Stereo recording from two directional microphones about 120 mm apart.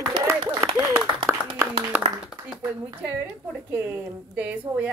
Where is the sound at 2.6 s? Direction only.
20° right (ahead or behind).